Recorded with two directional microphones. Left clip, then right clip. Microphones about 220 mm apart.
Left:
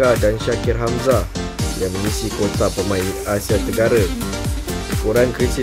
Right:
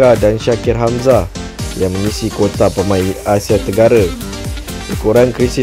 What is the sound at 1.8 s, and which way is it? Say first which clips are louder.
Speech: right 7 dB; centre (ahead or behind).